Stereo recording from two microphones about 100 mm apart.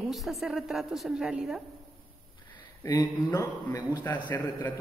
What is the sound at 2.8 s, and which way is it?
Speech, 35° left (ahead or behind).